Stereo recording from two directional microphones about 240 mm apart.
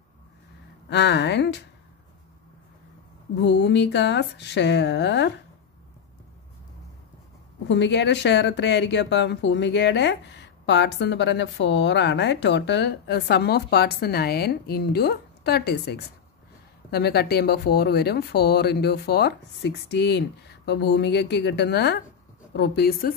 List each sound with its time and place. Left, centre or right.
0.8 s speech: left
3.4 s speech: left
7.6 s a woman's voice: left